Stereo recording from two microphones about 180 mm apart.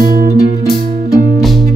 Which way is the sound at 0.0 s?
55° right (ahead or behind).